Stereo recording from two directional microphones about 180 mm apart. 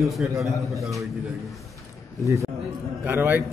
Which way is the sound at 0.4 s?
Centre (ahead or behind).